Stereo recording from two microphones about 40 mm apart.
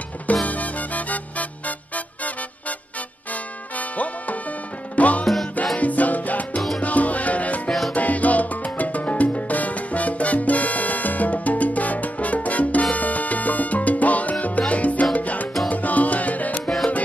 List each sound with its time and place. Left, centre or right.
0.3 s music: left
3.7 s music: left
5.2 s music: centre
5.8 s music: left
7.9 s salsa music: left
14.7 s music: left